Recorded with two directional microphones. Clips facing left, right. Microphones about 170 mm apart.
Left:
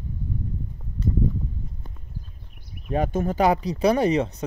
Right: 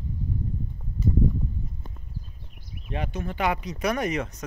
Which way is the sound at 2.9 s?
45° left (ahead or behind).